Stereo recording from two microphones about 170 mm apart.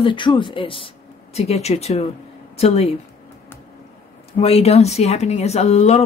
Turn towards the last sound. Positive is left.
turn(degrees=40)  # may be behind; listen again after turning